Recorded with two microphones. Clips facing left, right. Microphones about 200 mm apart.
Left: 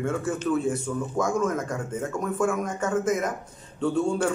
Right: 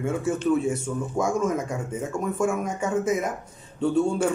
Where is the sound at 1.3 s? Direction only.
Centre (ahead or behind).